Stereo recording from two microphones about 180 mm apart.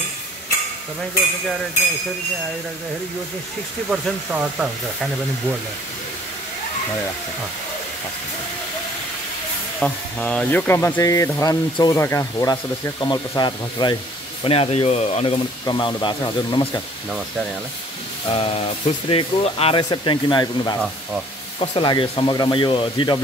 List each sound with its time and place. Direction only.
3.9 s speech: 5° right (ahead or behind)
9.8 s speech: 5° left (ahead or behind); by 16.8 s 25° left (ahead or behind)
18.3 s speech: 35° left (ahead or behind)